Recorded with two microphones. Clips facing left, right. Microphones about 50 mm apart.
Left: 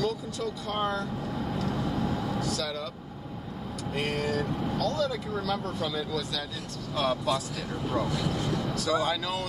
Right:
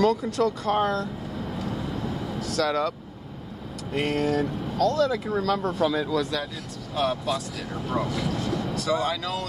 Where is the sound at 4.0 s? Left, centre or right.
Right.